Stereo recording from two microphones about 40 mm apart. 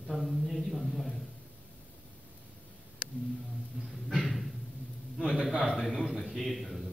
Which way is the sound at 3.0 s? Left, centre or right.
Left.